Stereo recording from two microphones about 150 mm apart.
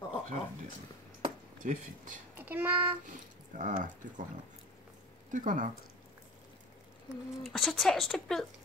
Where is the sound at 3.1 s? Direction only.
60° right (ahead or behind).